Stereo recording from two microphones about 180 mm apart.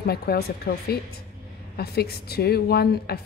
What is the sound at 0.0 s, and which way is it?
A woman's voice, 60° left (ahead or behind).